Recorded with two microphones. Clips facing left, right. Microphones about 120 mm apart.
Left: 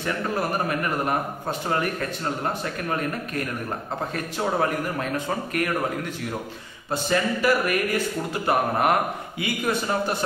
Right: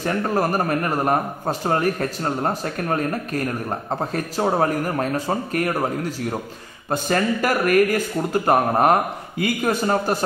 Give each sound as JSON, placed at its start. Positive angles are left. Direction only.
{"t": 0.0, "sound": "speech", "side_deg": -40}
{"t": 6.9, "sound": "speech", "side_deg": -50}